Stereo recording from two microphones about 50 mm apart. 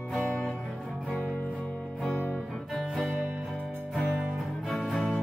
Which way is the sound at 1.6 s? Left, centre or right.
Left.